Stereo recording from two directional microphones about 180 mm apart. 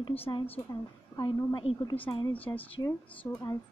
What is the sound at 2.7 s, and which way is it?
Speech, 20° left (ahead or behind).